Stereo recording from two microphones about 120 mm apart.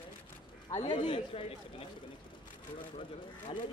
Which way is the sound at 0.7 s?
70° left (ahead or behind).